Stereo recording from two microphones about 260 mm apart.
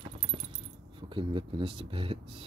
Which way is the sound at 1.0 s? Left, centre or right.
Centre.